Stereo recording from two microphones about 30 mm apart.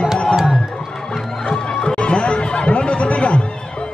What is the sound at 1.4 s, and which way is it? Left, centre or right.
Music, left.